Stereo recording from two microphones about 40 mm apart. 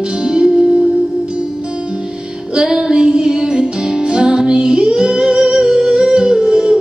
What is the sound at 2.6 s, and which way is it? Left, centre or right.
Music, centre.